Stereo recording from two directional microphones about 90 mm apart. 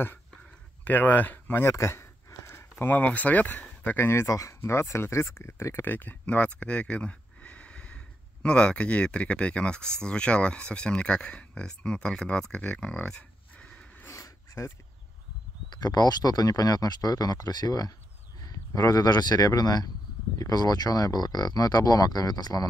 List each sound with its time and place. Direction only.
0.8 s speech: 20° left (ahead or behind)
14.0 s a sound: 30° left (ahead or behind)
15.7 s speech: 50° left (ahead or behind)